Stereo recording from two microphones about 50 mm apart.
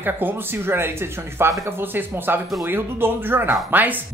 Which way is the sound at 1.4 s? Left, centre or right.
Right.